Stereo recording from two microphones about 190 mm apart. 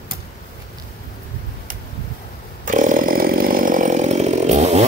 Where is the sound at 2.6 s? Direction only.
45° right (ahead or behind).